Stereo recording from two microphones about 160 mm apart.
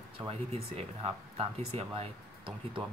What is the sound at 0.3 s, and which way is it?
Speech, 40° right (ahead or behind).